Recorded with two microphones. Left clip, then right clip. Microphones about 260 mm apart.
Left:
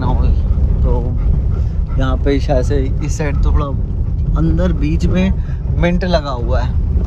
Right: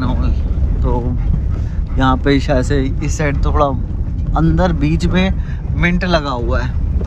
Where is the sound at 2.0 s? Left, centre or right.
Centre.